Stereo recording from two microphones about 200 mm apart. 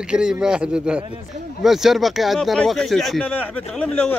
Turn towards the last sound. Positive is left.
turn(degrees=5)  # may be behind; listen again after turning